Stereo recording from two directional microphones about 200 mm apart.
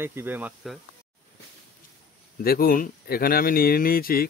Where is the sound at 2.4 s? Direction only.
50° left (ahead or behind).